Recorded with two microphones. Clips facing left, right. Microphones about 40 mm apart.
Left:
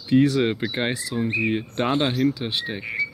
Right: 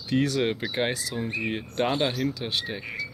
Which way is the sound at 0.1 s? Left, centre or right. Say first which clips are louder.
Left 6 dB; left.